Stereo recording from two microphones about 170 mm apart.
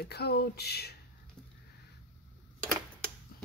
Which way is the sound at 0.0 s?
70° left (ahead or behind).